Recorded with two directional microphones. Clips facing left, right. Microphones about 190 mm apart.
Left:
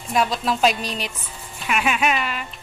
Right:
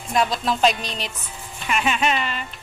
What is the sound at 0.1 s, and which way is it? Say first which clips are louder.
Speech: even; 5° left (ahead or behind).